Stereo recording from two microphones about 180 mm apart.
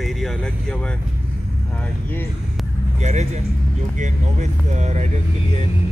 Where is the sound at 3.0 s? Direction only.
40° right (ahead or behind).